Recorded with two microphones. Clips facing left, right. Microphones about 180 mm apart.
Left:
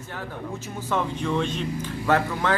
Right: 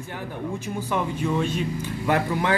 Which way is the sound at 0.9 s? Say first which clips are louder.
Even; 10° right (ahead or behind).